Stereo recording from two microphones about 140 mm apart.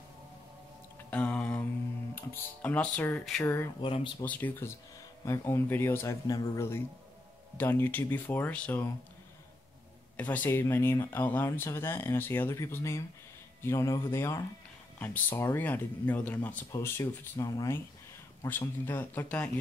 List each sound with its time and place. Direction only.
1.1 s a sound: 10° left (ahead or behind)
2.1 s speech: 15° left (ahead or behind)
3.8 s speech: 35° left (ahead or behind)
4.2 s speech: 15° left (ahead or behind)
10.1 s speech: 10° left (ahead or behind)